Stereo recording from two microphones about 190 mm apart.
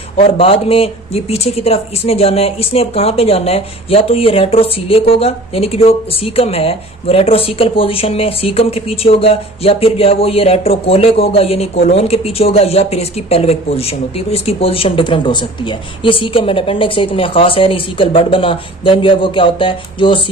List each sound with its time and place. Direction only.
0.2 s speech: 30° left (ahead or behind)